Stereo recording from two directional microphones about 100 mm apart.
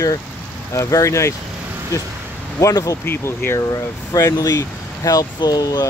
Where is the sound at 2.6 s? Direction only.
35° left (ahead or behind).